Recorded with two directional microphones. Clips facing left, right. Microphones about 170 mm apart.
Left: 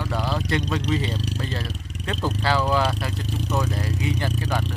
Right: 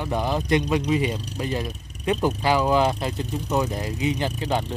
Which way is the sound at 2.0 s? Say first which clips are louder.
Right 4 dB; 15° right (ahead or behind).